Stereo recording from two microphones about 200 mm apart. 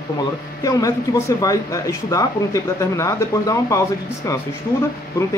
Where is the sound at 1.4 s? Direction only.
15° left (ahead or behind).